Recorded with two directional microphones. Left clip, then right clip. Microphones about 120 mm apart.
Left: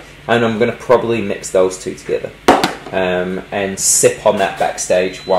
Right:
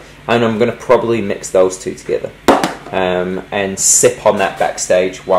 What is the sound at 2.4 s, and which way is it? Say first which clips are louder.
Chop: left 1 dB; 10° right (ahead or behind).